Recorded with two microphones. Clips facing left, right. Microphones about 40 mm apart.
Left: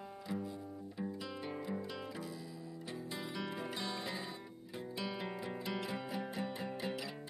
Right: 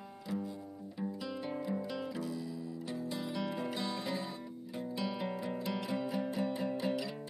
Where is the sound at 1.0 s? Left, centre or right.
Centre.